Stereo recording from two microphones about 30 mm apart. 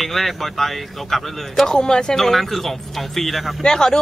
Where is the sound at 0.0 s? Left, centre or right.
Centre.